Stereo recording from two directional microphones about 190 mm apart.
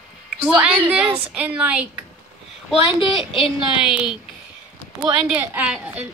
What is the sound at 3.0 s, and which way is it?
Speech, 25° left (ahead or behind).